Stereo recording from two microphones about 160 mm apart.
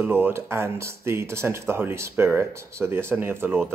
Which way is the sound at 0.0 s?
15° right (ahead or behind).